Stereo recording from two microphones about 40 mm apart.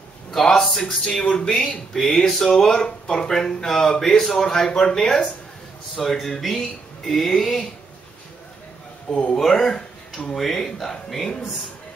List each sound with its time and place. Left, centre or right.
0.3 s a man's voice: centre
0.8 s speech: centre
9.1 s speech: left
9.4 s speech: centre